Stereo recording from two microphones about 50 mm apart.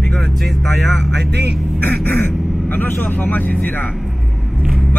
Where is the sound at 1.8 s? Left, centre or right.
Left.